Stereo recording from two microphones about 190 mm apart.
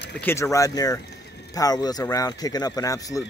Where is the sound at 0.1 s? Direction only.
10° left (ahead or behind).